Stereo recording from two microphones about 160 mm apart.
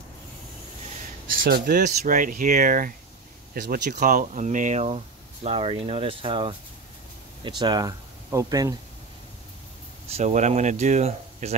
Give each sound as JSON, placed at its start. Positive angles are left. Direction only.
{"t": 1.3, "sound": "speech", "side_deg": -60}
{"t": 10.0, "sound": "speech", "side_deg": -45}